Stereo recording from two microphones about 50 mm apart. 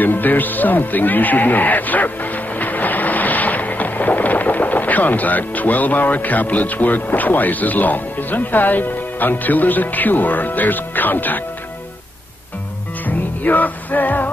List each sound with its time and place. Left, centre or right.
0.0 s speech: left
2.6 s boat: left
13.0 s music: left